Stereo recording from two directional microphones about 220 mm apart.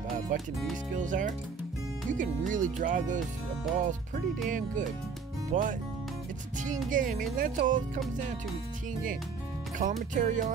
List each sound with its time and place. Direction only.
0.3 s speech: 35° right (ahead or behind)
4.5 s speech: 35° right (ahead or behind)
6.9 s speech: 35° right (ahead or behind)
9.8 s speech: 35° right (ahead or behind)